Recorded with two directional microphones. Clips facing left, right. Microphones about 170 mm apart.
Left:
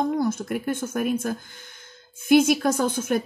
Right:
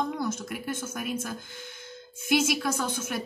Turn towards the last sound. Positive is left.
turn(degrees=50)  # may be behind; listen again after turning